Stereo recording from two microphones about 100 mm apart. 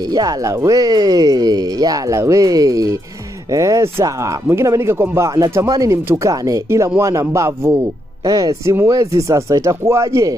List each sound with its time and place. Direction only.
0.0 s speech: 40° right (ahead or behind)